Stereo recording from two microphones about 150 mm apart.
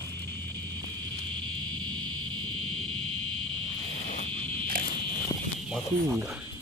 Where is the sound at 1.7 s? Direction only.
30° right (ahead or behind).